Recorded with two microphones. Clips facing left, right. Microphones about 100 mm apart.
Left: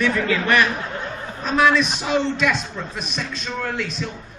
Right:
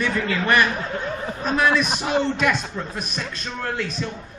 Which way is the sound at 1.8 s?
50° right (ahead or behind).